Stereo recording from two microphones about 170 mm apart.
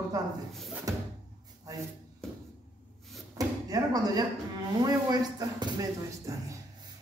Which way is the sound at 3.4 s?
20° right (ahead or behind).